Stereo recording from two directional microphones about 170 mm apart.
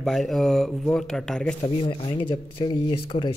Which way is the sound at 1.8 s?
30° left (ahead or behind).